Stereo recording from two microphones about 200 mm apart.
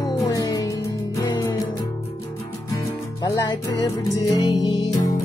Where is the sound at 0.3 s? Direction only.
20° left (ahead or behind).